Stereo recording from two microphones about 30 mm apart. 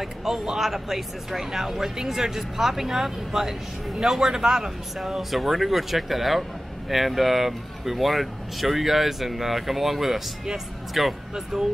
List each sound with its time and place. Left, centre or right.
0.0 s a man's voice: centre
4.9 s speech: centre